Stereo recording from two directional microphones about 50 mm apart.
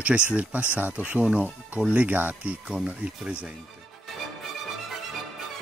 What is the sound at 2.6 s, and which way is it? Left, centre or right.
Speech, centre.